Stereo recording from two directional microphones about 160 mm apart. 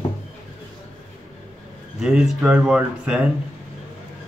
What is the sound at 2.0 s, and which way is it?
A man's voice, 5° right (ahead or behind).